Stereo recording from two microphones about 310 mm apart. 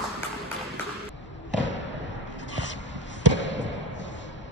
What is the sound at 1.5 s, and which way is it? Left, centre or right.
Basketball bounce, left.